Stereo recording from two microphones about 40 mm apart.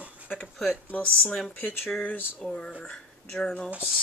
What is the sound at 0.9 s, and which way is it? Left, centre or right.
Speech, left.